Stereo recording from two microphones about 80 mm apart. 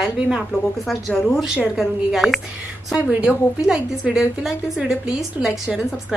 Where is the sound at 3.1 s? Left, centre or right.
Centre.